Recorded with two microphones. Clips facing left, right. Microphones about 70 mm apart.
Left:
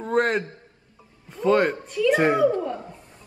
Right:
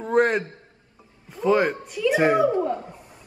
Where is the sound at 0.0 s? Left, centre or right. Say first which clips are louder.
Right 2 dB; centre.